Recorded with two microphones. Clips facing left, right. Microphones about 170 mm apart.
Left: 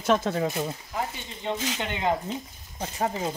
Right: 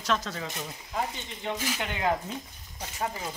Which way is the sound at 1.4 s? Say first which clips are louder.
Left 3 dB; 25° left (ahead or behind).